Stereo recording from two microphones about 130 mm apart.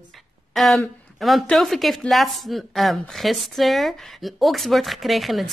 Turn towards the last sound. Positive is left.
turn(degrees=0)  # may be behind; listen again after turning